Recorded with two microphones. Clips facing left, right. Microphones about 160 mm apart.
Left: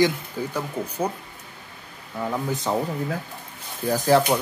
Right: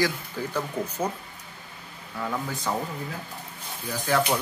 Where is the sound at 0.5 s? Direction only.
10° left (ahead or behind).